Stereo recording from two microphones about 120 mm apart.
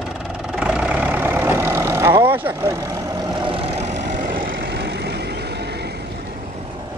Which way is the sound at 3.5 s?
55° right (ahead or behind).